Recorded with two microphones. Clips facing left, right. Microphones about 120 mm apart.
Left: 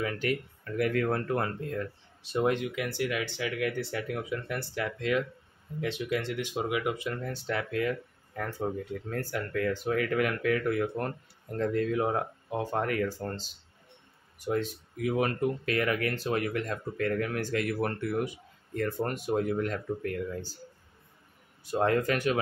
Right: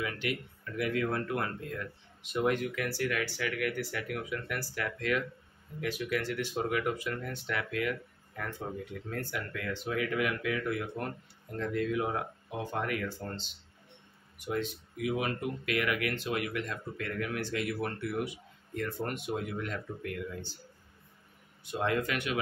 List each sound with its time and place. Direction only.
0.0 s speech: 40° left (ahead or behind); by 7.1 s 15° left (ahead or behind)
7.1 s speech: 30° left (ahead or behind)
21.6 s speech: 40° left (ahead or behind)